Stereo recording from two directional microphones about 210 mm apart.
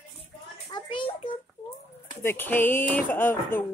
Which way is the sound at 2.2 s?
10° left (ahead or behind).